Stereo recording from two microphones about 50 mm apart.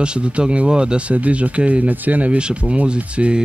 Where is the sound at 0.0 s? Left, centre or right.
Right.